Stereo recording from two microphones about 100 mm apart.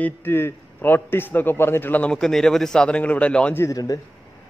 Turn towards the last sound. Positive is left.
turn(degrees=25)  # may be behind; listen again after turning